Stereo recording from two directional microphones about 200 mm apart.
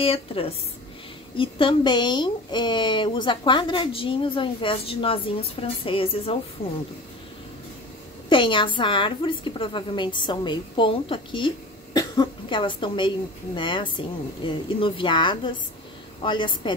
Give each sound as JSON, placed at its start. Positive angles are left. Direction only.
{"t": 0.0, "sound": "speech", "side_deg": 30}
{"t": 8.3, "sound": "speech", "side_deg": 25}